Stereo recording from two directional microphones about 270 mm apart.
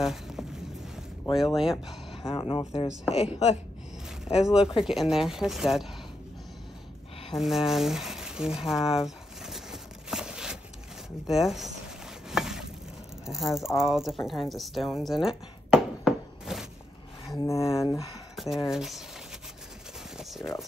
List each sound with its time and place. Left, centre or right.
0.0 s a sound: centre
1.3 s speech: centre
2.2 s speech: centre
2.9 s speech: centre
4.8 s speech: centre
7.3 s a sound: centre
11.2 s speech: centre
12.3 s chopping: centre
13.3 s speech: centre
17.4 s speech: centre
18.3 s a sound: centre
18.7 s speech: centre
20.2 s a sound: centre